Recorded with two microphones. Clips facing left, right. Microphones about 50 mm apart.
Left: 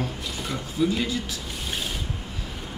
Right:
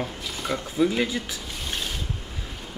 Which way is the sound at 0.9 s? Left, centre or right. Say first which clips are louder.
Right 1 dB; right.